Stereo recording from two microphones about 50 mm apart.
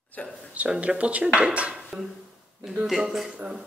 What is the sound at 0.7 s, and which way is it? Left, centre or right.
Speech, right.